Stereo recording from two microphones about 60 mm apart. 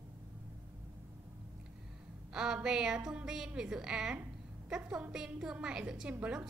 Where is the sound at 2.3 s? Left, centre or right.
Centre.